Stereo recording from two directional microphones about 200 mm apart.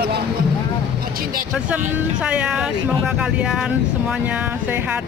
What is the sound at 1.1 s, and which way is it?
Music, 45° right (ahead or behind).